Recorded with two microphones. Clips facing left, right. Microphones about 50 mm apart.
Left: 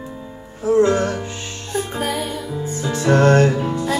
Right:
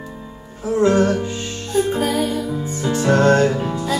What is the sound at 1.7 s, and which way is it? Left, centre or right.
Music, left.